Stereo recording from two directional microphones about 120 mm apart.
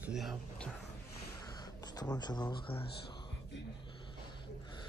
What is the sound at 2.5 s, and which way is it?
Speech, 50° left (ahead or behind).